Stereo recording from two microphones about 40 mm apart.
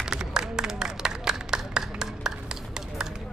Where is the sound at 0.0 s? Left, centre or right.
Centre.